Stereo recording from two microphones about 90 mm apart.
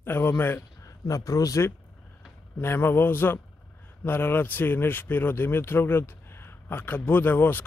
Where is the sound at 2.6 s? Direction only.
25° left (ahead or behind).